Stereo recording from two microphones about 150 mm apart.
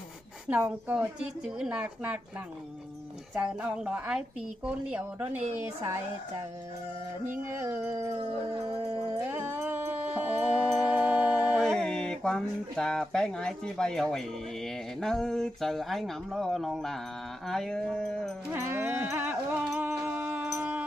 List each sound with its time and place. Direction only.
0.5 s speech: 10° right (ahead or behind)
3.3 s speech: 5° right (ahead or behind)
7.5 s speech: 15° right (ahead or behind)
8.1 s howl: 25° right (ahead or behind)
9.3 s music: 15° right (ahead or behind); by 14.2 s 5° left (ahead or behind)
15.0 s speech: 5° left (ahead or behind)
18.5 s sheep: 15° right (ahead or behind)